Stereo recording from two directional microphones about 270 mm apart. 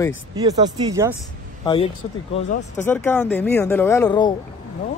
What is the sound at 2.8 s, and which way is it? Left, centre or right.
Speech, centre.